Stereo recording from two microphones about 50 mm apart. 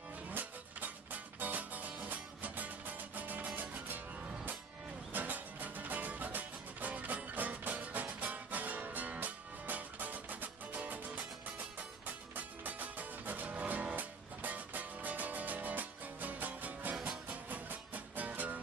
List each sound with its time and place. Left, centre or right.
0.3 s music: right
5.1 s music: right